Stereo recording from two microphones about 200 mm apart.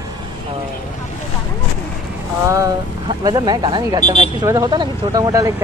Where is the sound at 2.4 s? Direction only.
15° right (ahead or behind).